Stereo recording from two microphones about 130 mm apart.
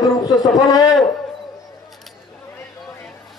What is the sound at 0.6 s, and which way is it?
Speech, 30° left (ahead or behind).